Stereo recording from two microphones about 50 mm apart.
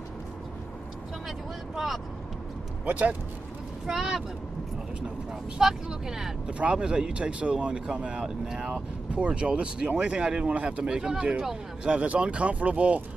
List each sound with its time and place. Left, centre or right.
2.8 s speech: right
3.8 s speech: centre
5.6 s speech: centre
9.1 s speech: right
10.8 s speech: centre